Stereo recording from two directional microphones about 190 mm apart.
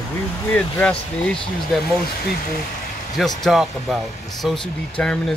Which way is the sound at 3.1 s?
Centre (ahead or behind).